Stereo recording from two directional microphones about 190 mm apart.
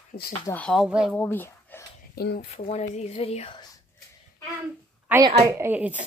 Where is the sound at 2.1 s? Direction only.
55° left (ahead or behind).